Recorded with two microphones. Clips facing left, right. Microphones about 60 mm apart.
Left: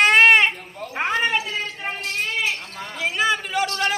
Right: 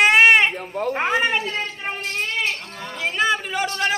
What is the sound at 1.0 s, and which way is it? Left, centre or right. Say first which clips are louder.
Speech: even; centre.